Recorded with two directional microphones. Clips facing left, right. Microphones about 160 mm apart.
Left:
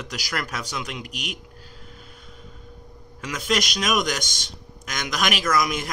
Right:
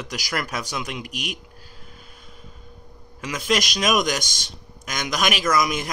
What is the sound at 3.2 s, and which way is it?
A man's voice, 10° right (ahead or behind).